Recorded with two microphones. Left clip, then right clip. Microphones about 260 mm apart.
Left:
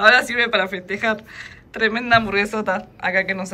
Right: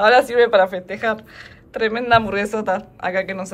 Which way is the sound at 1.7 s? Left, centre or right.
Centre.